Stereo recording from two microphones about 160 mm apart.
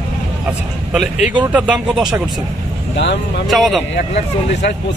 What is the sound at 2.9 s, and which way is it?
Speech, 90° left.